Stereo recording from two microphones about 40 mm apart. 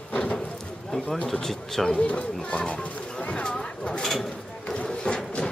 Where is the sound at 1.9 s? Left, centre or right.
Left.